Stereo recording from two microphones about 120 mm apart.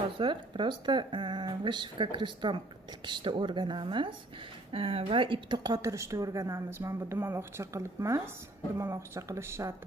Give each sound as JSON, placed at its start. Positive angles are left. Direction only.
{"t": 0.2, "sound": "a woman's voice", "side_deg": -45}